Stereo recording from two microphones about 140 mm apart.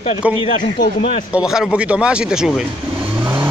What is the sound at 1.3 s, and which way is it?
Speech, 5° right (ahead or behind).